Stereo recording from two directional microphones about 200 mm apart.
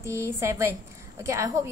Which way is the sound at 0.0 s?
15° right (ahead or behind).